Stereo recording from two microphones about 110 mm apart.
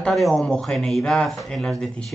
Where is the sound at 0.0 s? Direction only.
5° left (ahead or behind).